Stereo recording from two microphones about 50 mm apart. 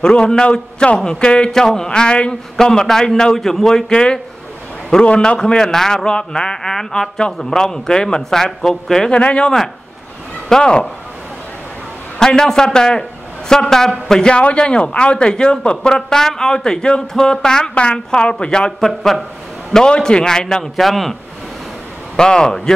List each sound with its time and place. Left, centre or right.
0.0 s a man's voice: centre
9.1 s a man's voice: left
10.5 s a man's voice: centre
12.2 s a man's voice: centre
14.3 s a man's voice: left; by 21.2 s centre
22.1 s a man's voice: centre